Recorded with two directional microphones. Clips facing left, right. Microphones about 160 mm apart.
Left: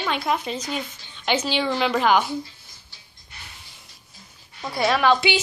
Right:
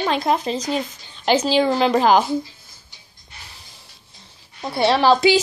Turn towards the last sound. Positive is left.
turn(degrees=-35)  # may be behind; listen again after turning